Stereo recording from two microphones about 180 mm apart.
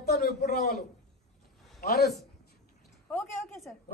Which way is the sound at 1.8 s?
60° left (ahead or behind).